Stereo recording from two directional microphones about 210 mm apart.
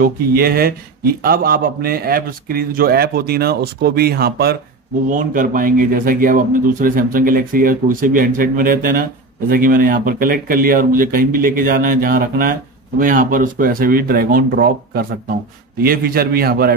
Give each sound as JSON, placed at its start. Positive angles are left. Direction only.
{"t": 0.0, "sound": "a man's voice", "side_deg": -45}